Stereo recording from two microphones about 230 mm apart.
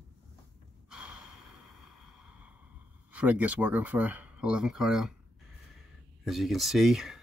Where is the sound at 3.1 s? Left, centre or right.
Centre.